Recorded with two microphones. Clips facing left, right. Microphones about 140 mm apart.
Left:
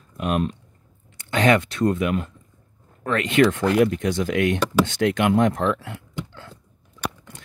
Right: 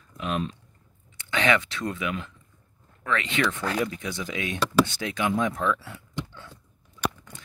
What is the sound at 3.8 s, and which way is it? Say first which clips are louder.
Speech: left 10 dB; 65° left (ahead or behind).